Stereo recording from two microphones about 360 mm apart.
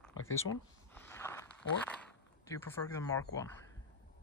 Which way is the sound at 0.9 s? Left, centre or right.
Centre.